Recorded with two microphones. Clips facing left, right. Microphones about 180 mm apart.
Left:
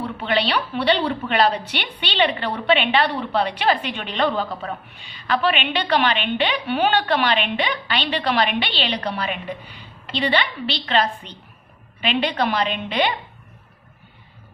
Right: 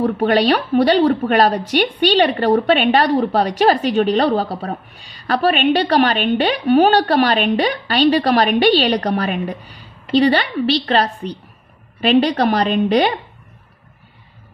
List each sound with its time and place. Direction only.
0.0 s a woman's voice: 45° right (ahead or behind)